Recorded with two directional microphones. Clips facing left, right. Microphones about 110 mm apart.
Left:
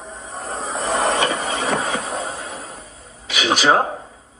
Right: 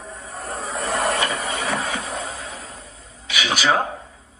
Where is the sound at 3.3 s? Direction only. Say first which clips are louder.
Left 4 dB; 40° left (ahead or behind).